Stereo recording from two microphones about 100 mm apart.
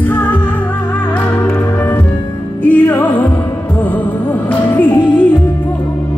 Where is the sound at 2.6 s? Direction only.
20° left (ahead or behind).